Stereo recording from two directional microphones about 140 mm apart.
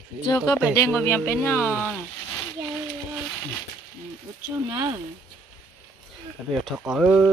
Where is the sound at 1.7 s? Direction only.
Centre (ahead or behind).